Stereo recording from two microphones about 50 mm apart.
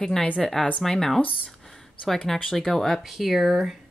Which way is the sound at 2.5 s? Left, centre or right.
Centre.